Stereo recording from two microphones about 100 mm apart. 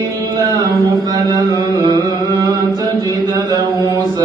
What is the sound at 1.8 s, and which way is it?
Carnatic music, 50° right (ahead or behind).